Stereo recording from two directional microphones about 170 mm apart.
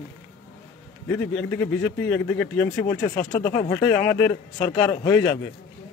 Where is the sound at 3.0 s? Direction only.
35° left (ahead or behind).